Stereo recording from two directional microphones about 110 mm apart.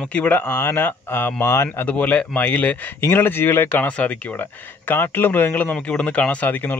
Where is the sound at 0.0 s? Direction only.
10° left (ahead or behind).